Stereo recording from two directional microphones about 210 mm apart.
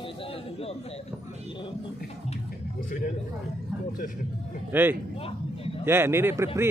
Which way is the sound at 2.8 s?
40° left (ahead or behind).